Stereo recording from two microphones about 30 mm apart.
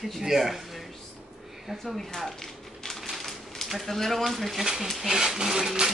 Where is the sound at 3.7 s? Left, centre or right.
Centre.